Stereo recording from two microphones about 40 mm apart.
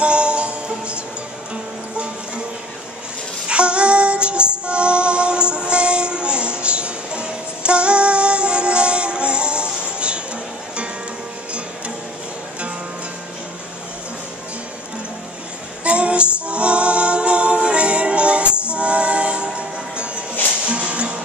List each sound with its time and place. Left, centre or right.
0.0 s music: right
3.4 s music: right
15.8 s music: right